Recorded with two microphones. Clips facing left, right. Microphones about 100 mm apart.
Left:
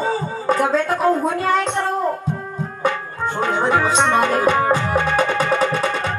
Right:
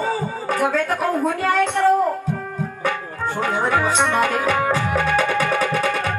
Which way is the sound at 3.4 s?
25° left (ahead or behind).